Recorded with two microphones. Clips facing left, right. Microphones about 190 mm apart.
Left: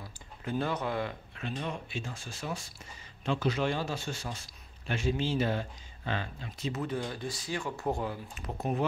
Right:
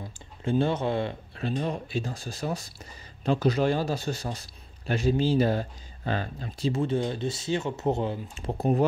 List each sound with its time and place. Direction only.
0.0 s speech: 25° right (ahead or behind)